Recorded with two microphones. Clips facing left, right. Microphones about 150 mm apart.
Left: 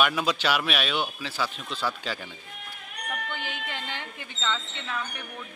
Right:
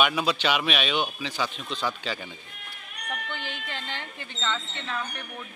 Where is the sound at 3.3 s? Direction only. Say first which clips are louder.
Left 1 dB; 10° left (ahead or behind).